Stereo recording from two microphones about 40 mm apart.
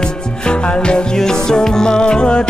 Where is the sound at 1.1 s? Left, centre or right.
Centre.